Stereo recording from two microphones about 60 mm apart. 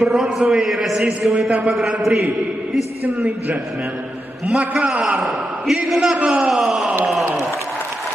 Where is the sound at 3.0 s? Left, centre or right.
Right; by 5.1 s centre.